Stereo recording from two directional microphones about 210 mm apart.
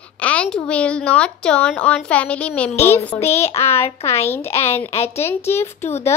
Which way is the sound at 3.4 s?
30° left (ahead or behind).